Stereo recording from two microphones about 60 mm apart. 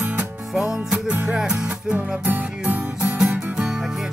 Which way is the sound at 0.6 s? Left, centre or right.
Centre.